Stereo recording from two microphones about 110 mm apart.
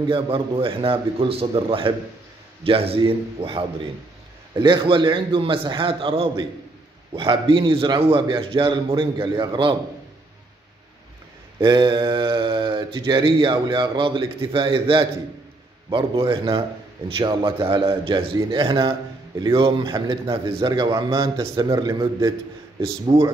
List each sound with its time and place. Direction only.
0.0 s a man's voice: 50° right (ahead or behind)
4.6 s speech: 45° right (ahead or behind)
11.6 s a man's voice: 40° right (ahead or behind)